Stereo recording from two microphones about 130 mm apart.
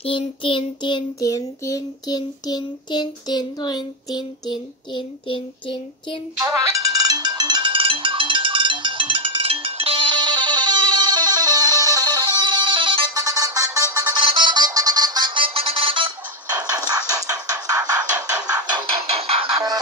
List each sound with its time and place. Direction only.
0.0 s child singing: 45° left (ahead or behind)
6.4 s music: 25° right (ahead or behind)
13.1 s music: 25° right (ahead or behind); by 16.1 s 40° right (ahead or behind)
16.5 s music: 30° right (ahead or behind)
19.1 s music: 50° right (ahead or behind)